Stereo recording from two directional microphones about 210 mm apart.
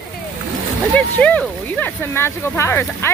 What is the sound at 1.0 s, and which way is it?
Speech, 5° left (ahead or behind).